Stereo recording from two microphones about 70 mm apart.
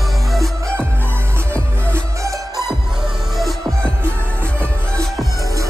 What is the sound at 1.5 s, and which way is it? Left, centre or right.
Music, right.